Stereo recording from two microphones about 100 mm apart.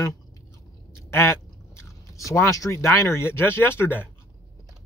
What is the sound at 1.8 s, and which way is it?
Speech, 30° left (ahead or behind).